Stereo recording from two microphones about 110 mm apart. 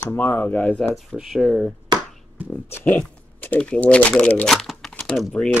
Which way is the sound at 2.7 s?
20° left (ahead or behind).